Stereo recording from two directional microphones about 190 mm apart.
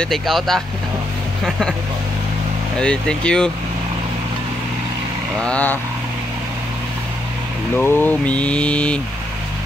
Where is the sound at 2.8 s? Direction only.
5° left (ahead or behind).